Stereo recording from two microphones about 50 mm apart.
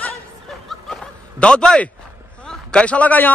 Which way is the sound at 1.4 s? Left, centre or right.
Centre.